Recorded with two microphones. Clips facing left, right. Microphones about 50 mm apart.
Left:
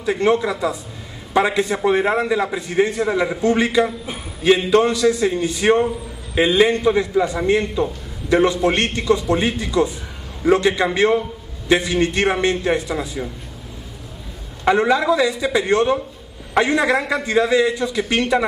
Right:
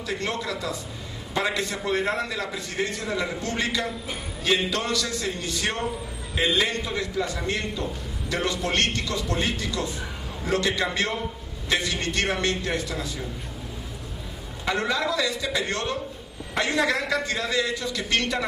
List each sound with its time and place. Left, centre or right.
0.0 s a man's voice: centre
14.8 s a man's voice: centre